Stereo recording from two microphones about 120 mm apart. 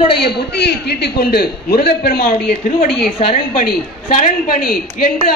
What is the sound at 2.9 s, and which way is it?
Speech, centre (ahead or behind).